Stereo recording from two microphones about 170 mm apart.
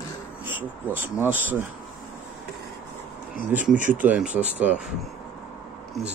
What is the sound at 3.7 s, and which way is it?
Speech, 50° right (ahead or behind).